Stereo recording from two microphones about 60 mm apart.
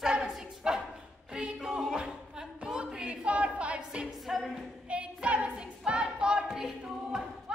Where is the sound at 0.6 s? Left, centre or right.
Centre.